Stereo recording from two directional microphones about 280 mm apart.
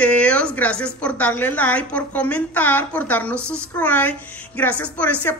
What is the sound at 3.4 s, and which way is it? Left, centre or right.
Speech, centre.